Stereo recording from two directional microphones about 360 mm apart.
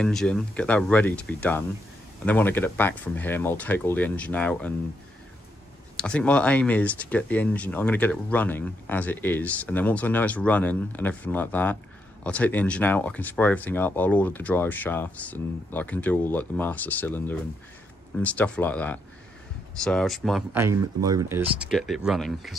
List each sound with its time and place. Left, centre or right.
0.0 s speech: centre
5.9 s speech: centre